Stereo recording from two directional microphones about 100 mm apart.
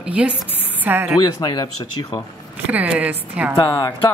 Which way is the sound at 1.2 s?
45° left (ahead or behind).